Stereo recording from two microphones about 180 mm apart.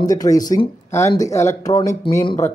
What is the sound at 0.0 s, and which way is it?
Speech, 20° left (ahead or behind).